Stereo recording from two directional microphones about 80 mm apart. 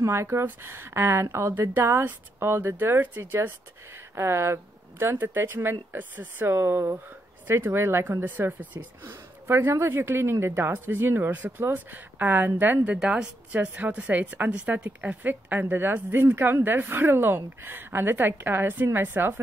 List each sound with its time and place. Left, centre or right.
0.0 s a woman's voice: right